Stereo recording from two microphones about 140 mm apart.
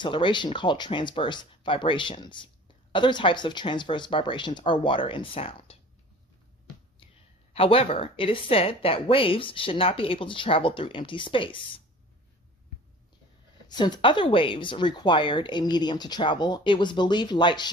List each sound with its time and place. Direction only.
0.0 s speech: 35° left (ahead or behind)
7.5 s speech: 40° left (ahead or behind)
13.7 s speech: 30° left (ahead or behind)